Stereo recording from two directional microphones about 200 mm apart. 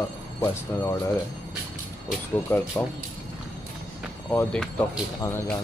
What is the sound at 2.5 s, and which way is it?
Speech, 5° left (ahead or behind).